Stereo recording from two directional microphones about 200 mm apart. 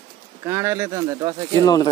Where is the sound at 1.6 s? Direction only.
20° left (ahead or behind).